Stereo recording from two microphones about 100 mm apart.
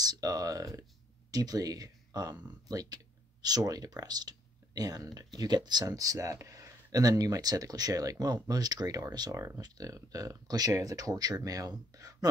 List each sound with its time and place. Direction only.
0.0 s speech: 40° right (ahead or behind)